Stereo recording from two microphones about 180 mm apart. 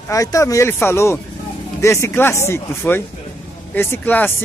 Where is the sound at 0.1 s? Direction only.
20° left (ahead or behind).